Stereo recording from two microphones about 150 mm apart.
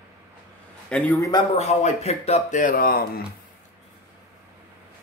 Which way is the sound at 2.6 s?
75° left (ahead or behind).